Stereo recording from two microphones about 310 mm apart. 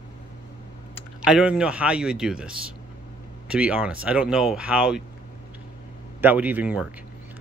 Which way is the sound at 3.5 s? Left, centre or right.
Centre.